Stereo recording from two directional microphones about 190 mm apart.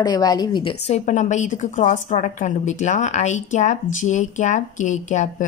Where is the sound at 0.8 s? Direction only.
40° left (ahead or behind).